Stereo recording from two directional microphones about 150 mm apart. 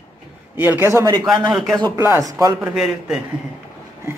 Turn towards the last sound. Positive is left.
turn(degrees=-5)  # may be behind; listen again after turning